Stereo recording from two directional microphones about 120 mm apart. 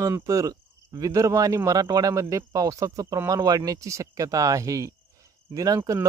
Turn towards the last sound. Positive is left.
turn(degrees=-30)  # may be behind; listen again after turning